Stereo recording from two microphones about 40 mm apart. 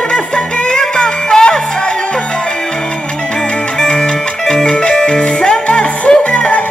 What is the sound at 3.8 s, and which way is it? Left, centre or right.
Music, centre.